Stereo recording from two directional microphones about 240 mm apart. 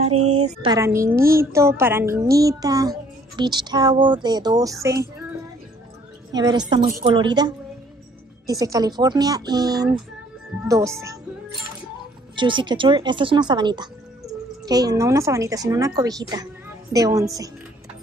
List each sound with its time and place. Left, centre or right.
0.6 s a woman's voice: centre
6.3 s a woman's voice: centre
6.8 s a woman's voice: right
7.1 s a woman's voice: centre
12.4 s a woman's voice: centre